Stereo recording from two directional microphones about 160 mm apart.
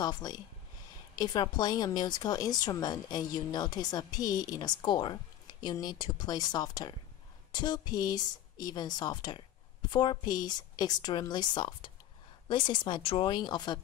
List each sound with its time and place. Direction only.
0.0 s speech: 25° left (ahead or behind)